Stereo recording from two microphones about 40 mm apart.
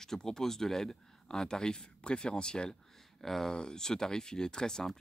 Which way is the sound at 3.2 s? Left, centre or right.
Centre.